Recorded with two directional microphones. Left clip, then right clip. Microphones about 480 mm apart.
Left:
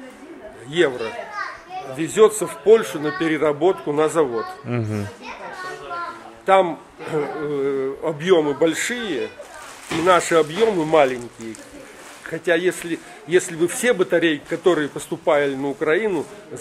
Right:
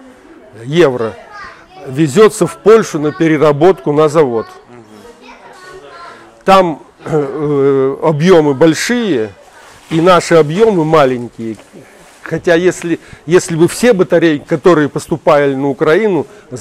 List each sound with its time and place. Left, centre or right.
0.7 s speech: right
2.0 s speech: right
3.9 s speech: right
6.4 s speech: right
10.0 s speech: right
12.2 s speech: right
13.8 s speech: right